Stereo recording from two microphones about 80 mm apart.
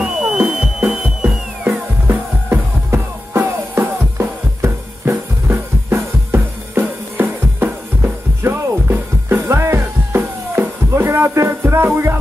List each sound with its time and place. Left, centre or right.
0.0 s music: centre
2.0 s music: right